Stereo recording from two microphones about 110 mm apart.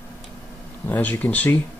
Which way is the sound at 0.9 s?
15° left (ahead or behind).